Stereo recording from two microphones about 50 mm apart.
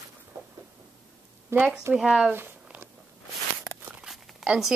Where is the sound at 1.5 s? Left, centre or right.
Right.